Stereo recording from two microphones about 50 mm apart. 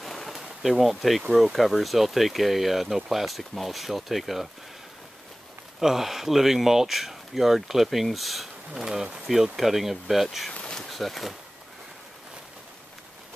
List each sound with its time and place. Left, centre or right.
0.0 s speech: centre
5.8 s speech: centre
8.8 s speech: centre
10.7 s bee: centre